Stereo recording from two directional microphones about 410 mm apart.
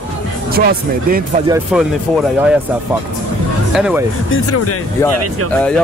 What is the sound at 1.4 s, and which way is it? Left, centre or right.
Speech, centre.